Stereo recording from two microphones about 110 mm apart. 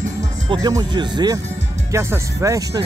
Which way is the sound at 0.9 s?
40° right (ahead or behind).